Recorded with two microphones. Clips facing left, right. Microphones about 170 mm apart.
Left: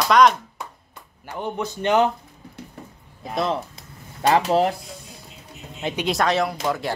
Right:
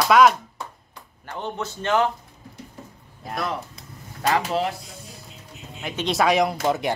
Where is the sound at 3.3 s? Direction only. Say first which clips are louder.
Left 4 dB; 25° left (ahead or behind).